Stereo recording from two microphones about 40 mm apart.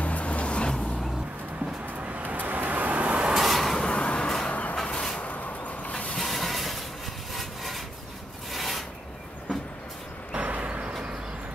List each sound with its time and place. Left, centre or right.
0.0 s vehicle: left
2.0 s vehicle: right
2.3 s vehicle: right
3.3 s a sound: centre
3.8 s a sound: left
4.5 s vehicle: left
4.8 s a sound: centre
5.2 s a sound: left
6.1 s vehicle: centre
7.3 s wood: centre
8.5 s filing: centre
10.3 s vehicle: right